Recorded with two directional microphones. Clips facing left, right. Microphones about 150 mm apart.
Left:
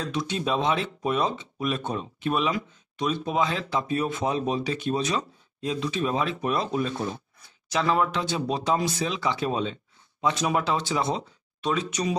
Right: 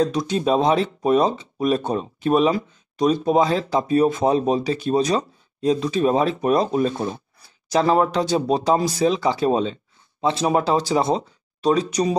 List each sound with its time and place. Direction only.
0.0 s speech: 40° right (ahead or behind)